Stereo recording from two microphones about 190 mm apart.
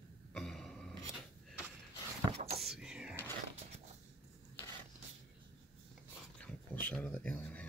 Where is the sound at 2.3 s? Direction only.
30° right (ahead or behind).